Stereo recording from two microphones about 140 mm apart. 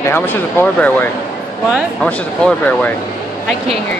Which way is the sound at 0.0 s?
15° left (ahead or behind).